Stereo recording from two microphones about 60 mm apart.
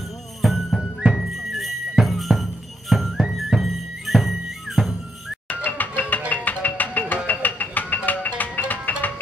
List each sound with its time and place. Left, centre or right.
0.4 s music: centre
5.5 s music: left